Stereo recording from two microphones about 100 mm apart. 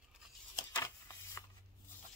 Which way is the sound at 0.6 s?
30° left (ahead or behind).